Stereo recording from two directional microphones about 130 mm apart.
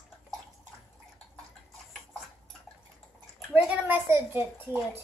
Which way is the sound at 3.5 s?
10° right (ahead or behind).